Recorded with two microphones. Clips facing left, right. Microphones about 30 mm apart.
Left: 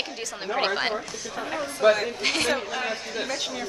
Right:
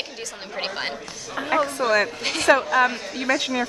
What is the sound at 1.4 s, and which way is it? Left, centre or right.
Speech, right.